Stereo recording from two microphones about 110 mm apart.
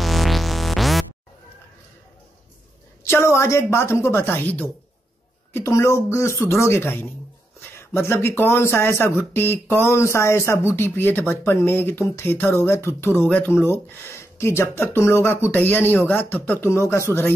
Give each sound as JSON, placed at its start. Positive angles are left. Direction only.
{"t": 0.0, "sound": "music", "side_deg": 0}
{"t": 3.0, "sound": "a sound", "side_deg": 20}
{"t": 3.7, "sound": "speech", "side_deg": 25}